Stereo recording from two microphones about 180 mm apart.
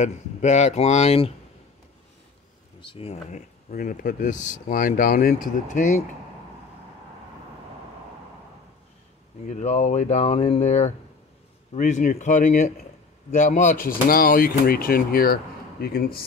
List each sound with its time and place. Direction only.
0.0 s speech: 40° left (ahead or behind)
2.8 s speech: 30° left (ahead or behind)
9.5 s speech: 40° left (ahead or behind); by 16.3 s 55° left (ahead or behind)